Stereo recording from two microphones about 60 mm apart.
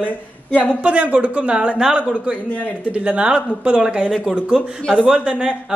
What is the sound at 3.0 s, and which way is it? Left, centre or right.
Speech, centre.